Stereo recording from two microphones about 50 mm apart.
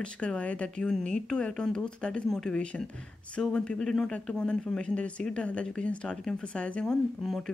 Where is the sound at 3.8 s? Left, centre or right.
Centre.